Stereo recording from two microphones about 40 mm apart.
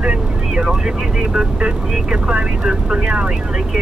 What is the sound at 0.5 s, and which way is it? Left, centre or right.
Speech, right.